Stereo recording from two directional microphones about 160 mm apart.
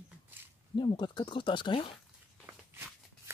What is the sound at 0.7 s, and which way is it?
Speech, 30° left (ahead or behind).